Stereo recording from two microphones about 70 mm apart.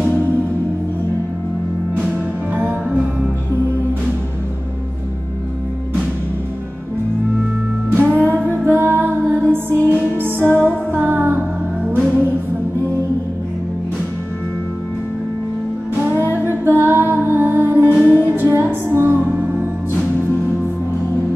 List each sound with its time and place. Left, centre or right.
2.5 s music: right
7.9 s music: right
16.0 s music: right